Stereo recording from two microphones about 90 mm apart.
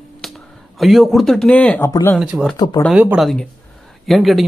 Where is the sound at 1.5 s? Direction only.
15° left (ahead or behind).